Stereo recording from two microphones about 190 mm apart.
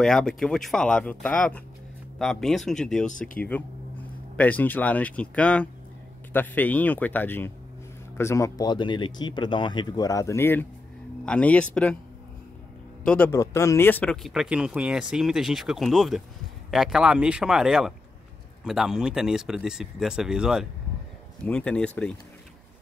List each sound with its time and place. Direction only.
0.0 s speech: 5° left (ahead or behind)
13.0 s speech: 5° left (ahead or behind)